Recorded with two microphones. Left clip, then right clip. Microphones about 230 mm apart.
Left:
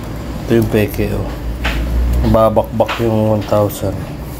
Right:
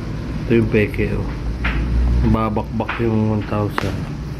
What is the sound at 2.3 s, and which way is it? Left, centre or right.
Speech, centre.